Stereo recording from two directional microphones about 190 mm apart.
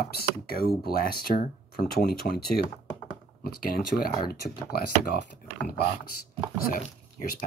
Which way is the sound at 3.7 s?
55° left (ahead or behind).